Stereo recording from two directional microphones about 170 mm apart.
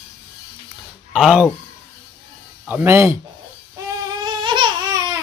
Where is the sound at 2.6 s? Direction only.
15° right (ahead or behind).